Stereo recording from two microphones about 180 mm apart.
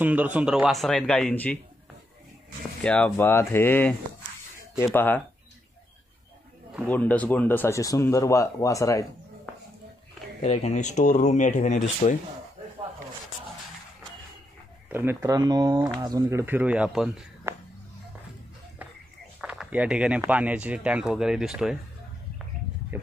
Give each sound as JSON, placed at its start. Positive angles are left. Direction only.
{"t": 0.0, "sound": "speech", "side_deg": -10}
{"t": 2.8, "sound": "speech", "side_deg": 5}
{"t": 4.9, "sound": "speech", "side_deg": 10}
{"t": 6.9, "sound": "speech", "side_deg": 10}
{"t": 10.4, "sound": "speech", "side_deg": 40}
{"t": 14.9, "sound": "speech", "side_deg": -10}
{"t": 17.5, "sound": "a sound", "side_deg": -15}
{"t": 19.4, "sound": "speech", "side_deg": -5}